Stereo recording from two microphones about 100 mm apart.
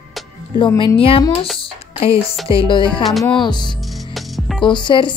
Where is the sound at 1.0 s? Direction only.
65° left (ahead or behind).